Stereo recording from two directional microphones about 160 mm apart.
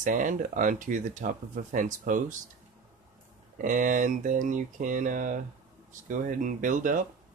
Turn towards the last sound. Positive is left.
turn(degrees=-55)  # may be behind; listen again after turning